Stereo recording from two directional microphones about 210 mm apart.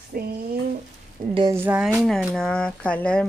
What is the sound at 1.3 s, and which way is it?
Speech, 20° right (ahead or behind).